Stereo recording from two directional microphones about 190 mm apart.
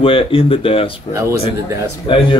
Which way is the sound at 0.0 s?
30° left (ahead or behind).